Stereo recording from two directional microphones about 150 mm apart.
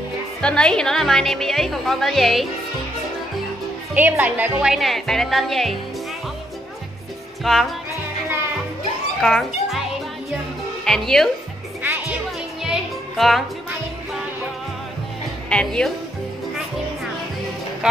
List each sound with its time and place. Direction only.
0.4 s speech: 5° left (ahead or behind)
3.9 s speech: 10° right (ahead or behind)
7.5 s speech: centre (ahead or behind)
9.2 s a child's voice: centre (ahead or behind)
10.9 s speech: 5° left (ahead or behind)
11.8 s music: 15° right (ahead or behind)
12.6 s music: centre (ahead or behind)
15.5 s speech: 5° left (ahead or behind)